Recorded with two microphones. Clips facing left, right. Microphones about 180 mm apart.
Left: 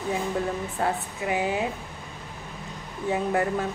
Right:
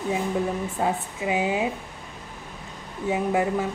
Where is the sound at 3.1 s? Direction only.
10° right (ahead or behind).